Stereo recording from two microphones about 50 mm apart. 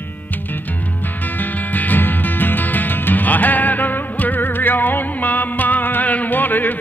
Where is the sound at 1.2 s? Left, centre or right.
Left.